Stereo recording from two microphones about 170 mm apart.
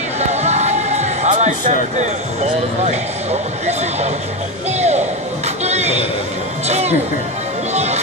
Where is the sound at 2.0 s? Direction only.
40° right (ahead or behind).